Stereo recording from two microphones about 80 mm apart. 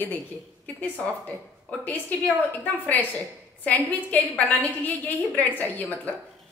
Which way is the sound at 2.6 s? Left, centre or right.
Left.